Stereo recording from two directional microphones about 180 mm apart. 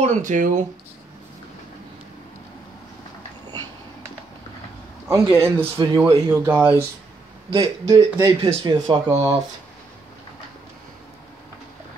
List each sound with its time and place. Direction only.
0.0 s speech: 45° right (ahead or behind)
5.0 s speech: 15° right (ahead or behind)